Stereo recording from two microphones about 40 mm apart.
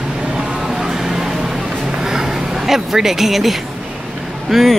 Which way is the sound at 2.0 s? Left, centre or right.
Centre.